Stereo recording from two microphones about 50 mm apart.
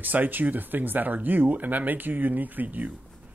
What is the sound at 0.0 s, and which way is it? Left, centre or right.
Speech, right.